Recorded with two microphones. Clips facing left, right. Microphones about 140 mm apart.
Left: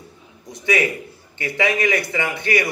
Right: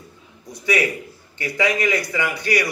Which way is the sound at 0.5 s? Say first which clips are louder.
Left 1 dB; 20° left (ahead or behind).